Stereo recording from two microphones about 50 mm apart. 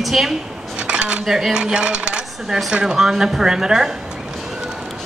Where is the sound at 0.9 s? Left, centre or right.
Centre.